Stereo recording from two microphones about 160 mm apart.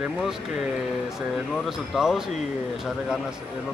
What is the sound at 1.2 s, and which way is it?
Speech, centre (ahead or behind).